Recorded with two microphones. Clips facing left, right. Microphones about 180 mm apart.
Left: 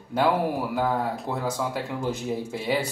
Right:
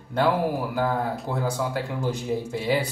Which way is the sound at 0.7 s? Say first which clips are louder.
Even; centre (ahead or behind).